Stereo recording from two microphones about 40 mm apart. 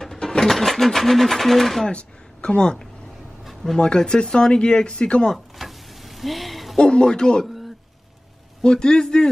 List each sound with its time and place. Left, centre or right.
0.0 s speech: centre
1.9 s speech: left
5.6 s a sound: centre
6.8 s speech: left
8.6 s speech: centre